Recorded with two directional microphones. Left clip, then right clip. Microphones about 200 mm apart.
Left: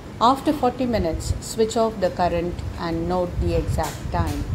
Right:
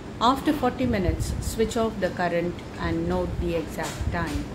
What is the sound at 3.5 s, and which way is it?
Speech, 10° left (ahead or behind).